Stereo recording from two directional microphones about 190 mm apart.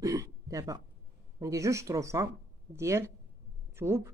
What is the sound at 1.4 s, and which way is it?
Speech, 15° right (ahead or behind).